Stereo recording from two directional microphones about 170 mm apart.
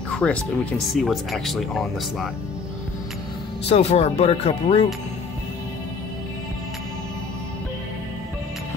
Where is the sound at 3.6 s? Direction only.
40° left (ahead or behind).